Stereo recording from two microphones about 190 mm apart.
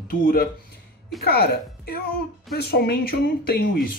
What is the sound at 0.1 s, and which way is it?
Speech, 50° left (ahead or behind).